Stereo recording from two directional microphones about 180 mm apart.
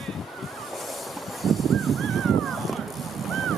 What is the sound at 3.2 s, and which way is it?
Vehicle, centre (ahead or behind).